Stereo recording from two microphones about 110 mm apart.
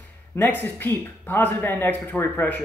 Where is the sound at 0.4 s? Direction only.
15° left (ahead or behind).